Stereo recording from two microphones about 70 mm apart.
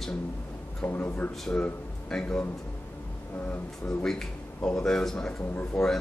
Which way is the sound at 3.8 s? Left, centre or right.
Centre.